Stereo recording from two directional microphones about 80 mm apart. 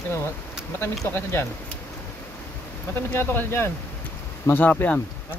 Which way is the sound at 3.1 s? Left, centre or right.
Left.